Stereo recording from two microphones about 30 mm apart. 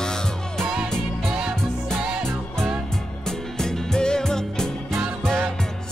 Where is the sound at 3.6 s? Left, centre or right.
Left.